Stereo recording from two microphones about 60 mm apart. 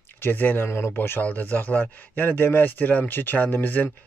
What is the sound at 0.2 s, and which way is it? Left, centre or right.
Speech, left.